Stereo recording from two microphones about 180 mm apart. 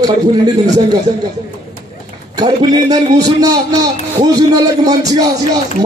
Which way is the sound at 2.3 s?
20° right (ahead or behind).